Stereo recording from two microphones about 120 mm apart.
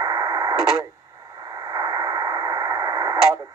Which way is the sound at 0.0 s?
30° right (ahead or behind).